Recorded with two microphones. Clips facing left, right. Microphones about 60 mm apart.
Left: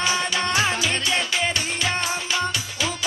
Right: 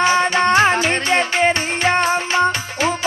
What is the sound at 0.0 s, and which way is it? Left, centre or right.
Music, right.